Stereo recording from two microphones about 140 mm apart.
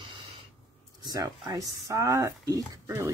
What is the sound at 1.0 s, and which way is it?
Speech, 25° right (ahead or behind).